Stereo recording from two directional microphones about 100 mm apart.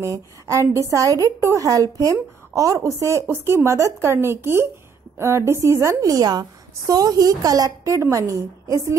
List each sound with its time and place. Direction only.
0.0 s a woman's voice: 30° right (ahead or behind)